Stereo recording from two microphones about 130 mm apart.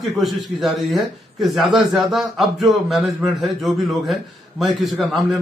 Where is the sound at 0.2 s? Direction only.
Centre (ahead or behind).